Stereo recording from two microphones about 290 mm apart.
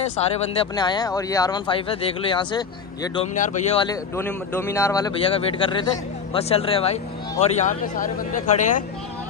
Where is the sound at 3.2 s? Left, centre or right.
Left.